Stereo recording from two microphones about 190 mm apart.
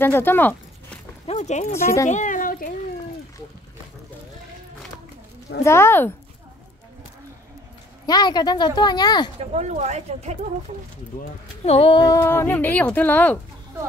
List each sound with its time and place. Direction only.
0.0 s speech: 10° left (ahead or behind)
1.2 s speech: 35° left (ahead or behind)
1.7 s speech: 15° left (ahead or behind)
2.0 s a sound: 40° left (ahead or behind)
5.6 s speech: 15° left (ahead or behind)
8.1 s speech: 20° left (ahead or behind)
9.4 s speech: 35° right (ahead or behind)
11.6 s speech: 30° left (ahead or behind); by 13.4 s 10° left (ahead or behind)